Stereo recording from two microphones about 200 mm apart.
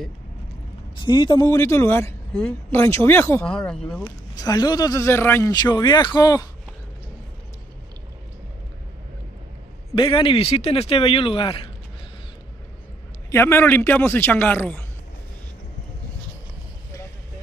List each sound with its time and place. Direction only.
0.9 s speech: 25° left (ahead or behind); by 4.0 s 5° left (ahead or behind)
4.0 s a man's voice: 20° left (ahead or behind)
9.8 s a man's voice: 25° left (ahead or behind)
13.3 s speech: 10° left (ahead or behind)